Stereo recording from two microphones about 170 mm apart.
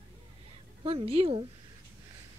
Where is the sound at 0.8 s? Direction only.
35° right (ahead or behind).